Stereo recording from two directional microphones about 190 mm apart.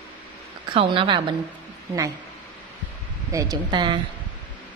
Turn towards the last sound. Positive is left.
turn(degrees=-25)  # may be behind; listen again after turning